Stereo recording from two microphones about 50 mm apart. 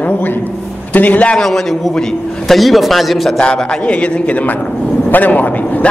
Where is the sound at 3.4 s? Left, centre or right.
Centre.